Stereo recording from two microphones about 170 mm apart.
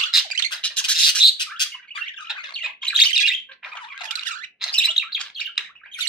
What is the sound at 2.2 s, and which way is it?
Squawk, centre (ahead or behind).